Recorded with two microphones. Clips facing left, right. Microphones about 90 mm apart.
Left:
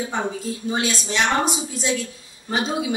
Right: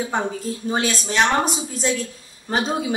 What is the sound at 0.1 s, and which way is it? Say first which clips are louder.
A woman's voice: right 1 dB; 40° right (ahead or behind).